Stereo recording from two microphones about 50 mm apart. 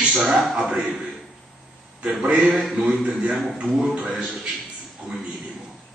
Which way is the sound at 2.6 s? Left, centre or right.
Centre.